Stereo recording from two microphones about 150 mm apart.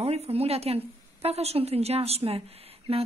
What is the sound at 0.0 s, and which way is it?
Speech, 40° right (ahead or behind).